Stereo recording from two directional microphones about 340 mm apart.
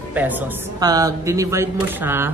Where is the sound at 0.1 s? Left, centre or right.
Centre.